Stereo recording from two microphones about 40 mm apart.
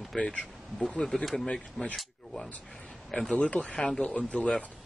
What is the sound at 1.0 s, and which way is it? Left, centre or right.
Speech, left.